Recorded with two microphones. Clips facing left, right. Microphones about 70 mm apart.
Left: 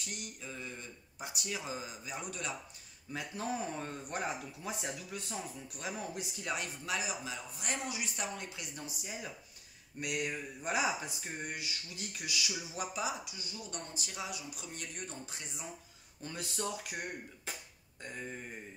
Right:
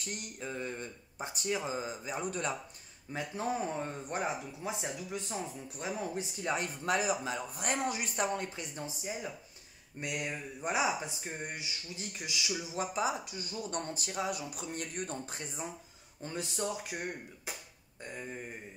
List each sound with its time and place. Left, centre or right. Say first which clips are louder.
0.1 s speech: right 7 dB; right
6.8 s speech: right 7 dB; right
16.2 s speech: right 3 dB; right